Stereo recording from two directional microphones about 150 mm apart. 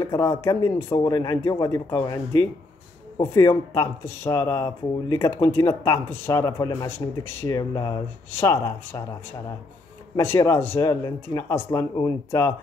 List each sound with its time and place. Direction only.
0.0 s speech: 20° left (ahead or behind)
8.3 s speech: 15° left (ahead or behind)
10.1 s speech: 15° left (ahead or behind)